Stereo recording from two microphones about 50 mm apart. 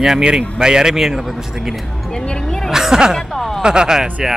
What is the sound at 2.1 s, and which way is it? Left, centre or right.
Speech, left.